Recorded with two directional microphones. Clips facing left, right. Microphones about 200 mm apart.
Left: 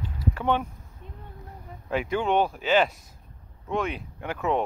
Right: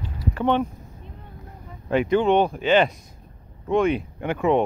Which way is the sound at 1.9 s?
5° left (ahead or behind).